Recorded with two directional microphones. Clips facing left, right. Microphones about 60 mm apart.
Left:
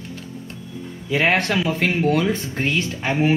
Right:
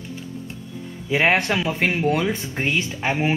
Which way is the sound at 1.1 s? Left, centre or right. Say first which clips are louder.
Even; centre.